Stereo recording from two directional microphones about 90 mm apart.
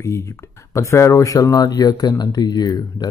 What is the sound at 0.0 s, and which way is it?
Speech, 35° left (ahead or behind).